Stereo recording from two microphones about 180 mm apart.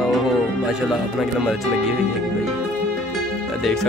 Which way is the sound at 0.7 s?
Centre (ahead or behind).